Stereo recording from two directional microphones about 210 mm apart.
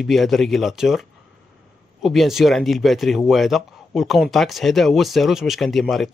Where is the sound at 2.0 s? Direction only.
Centre (ahead or behind).